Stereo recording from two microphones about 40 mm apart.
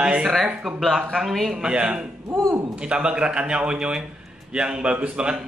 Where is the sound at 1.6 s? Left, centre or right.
Right.